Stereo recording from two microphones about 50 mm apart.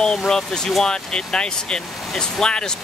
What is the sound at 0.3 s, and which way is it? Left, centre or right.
Speech, centre.